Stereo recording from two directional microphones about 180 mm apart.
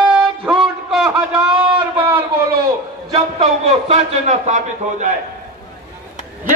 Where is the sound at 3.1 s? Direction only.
35° right (ahead or behind).